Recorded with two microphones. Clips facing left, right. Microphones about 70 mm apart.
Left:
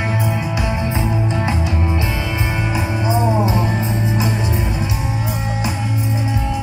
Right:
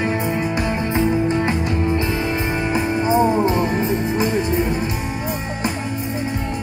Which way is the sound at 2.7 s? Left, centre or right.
Right.